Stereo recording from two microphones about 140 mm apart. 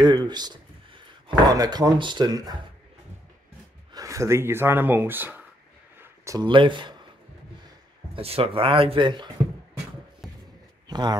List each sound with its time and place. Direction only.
0.0 s a sound: 30° right (ahead or behind)
1.5 s speech: 30° right (ahead or behind)
3.9 s speech: 20° right (ahead or behind)
8.1 s speech: 45° right (ahead or behind)
10.2 s a sound: centre (ahead or behind)
10.9 s speech: 30° right (ahead or behind)